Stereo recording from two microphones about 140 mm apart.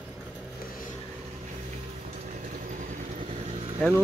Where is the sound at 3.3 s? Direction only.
50° right (ahead or behind).